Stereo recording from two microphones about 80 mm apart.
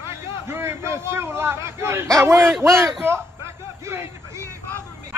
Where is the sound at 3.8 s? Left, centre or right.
Right.